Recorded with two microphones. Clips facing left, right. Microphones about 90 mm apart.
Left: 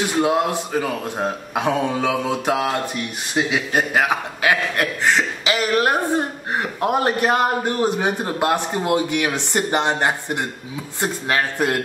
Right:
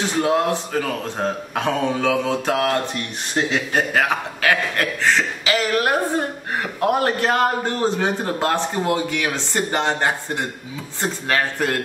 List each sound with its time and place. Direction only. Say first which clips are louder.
0.2 s a man's voice: even; 15° left (ahead or behind)